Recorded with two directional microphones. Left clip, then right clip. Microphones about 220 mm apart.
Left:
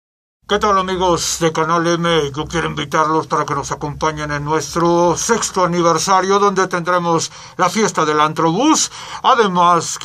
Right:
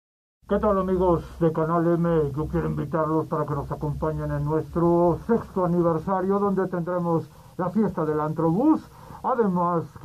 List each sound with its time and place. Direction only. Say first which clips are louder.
0.5 s speech: left 8 dB; 15° left (ahead or behind)